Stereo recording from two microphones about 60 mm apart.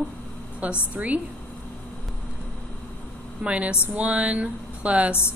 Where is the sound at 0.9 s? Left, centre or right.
Right.